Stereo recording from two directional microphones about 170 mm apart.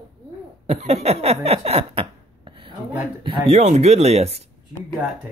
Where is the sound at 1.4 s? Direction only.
35° right (ahead or behind).